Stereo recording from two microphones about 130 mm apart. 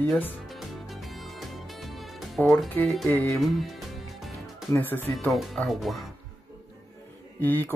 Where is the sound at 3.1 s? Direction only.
15° left (ahead or behind).